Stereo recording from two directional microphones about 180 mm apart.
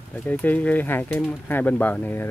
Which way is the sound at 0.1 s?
10° left (ahead or behind).